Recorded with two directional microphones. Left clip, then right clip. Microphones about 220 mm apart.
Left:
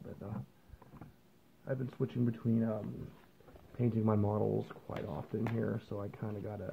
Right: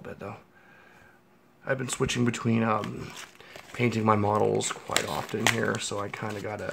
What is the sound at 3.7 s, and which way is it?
Speech, 15° right (ahead or behind).